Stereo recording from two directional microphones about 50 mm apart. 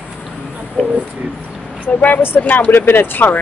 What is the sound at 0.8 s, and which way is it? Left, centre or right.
Speech, left.